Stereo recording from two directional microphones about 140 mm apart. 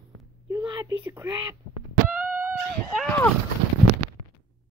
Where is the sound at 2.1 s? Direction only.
10° right (ahead or behind).